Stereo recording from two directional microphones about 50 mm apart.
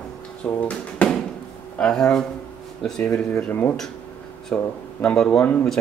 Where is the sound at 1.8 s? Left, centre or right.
Centre.